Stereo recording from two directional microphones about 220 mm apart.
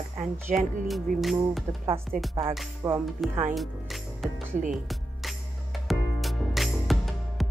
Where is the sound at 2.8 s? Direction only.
15° right (ahead or behind).